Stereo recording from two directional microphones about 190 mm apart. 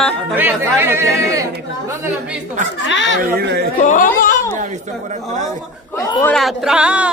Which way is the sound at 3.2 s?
55° right (ahead or behind).